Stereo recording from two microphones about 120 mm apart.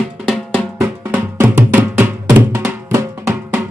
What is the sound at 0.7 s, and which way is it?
Music, 15° right (ahead or behind).